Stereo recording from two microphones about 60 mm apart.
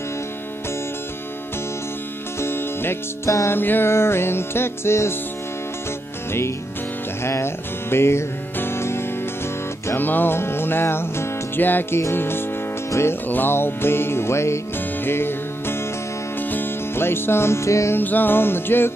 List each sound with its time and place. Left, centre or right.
2.4 s music: left
7.2 s music: left
9.9 s music: left
17.9 s music: left